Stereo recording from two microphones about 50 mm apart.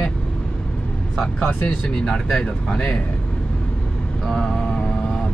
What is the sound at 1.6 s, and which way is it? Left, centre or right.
Speech, centre.